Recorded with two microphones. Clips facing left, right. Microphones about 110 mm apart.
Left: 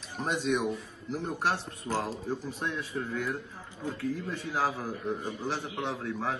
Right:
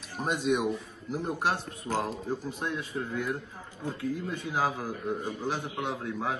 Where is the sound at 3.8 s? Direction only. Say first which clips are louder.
Even; 10° right (ahead or behind).